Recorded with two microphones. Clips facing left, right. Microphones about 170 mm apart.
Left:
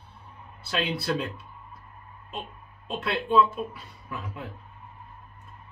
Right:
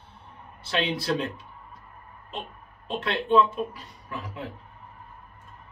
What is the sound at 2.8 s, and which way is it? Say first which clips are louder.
Speech: right 1 dB; 5° left (ahead or behind).